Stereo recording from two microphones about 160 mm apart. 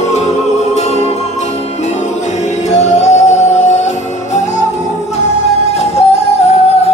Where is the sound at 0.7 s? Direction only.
40° left (ahead or behind).